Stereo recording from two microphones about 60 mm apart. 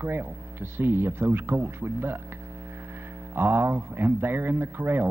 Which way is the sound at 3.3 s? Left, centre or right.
Right.